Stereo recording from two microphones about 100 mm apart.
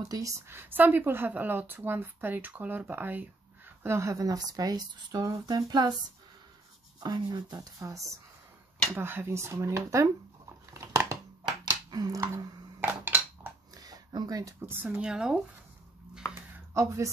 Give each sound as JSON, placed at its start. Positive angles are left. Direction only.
{"t": 0.1, "sound": "a woman's voice", "side_deg": -30}
{"t": 7.0, "sound": "speech", "side_deg": -40}
{"t": 8.9, "sound": "a woman's voice", "side_deg": -25}
{"t": 10.7, "sound": "crushing", "side_deg": -30}
{"t": 11.4, "sound": "dishes", "side_deg": -40}
{"t": 13.7, "sound": "a sound", "side_deg": -40}
{"t": 14.7, "sound": "a woman's voice", "side_deg": -20}
{"t": 15.0, "sound": "speech", "side_deg": -10}
{"t": 16.8, "sound": "speech", "side_deg": -30}